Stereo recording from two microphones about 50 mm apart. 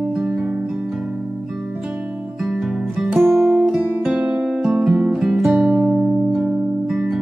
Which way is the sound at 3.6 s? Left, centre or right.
Centre.